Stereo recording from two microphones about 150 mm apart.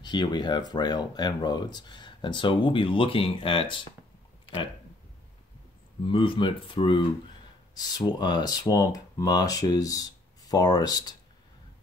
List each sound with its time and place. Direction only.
0.0 s speech: 30° left (ahead or behind)
6.0 s speech: 35° left (ahead or behind)